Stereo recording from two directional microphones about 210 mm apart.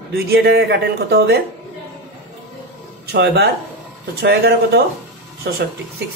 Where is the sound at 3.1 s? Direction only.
50° right (ahead or behind).